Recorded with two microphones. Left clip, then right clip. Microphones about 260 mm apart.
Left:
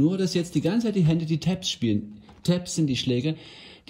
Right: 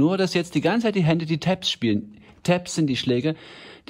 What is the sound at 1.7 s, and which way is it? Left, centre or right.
Speech, centre.